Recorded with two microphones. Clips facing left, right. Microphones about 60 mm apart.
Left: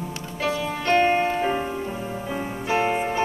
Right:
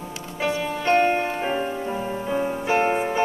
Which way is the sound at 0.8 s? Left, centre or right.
Right.